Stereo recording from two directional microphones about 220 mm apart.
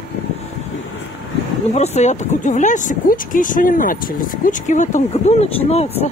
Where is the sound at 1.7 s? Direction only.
30° left (ahead or behind).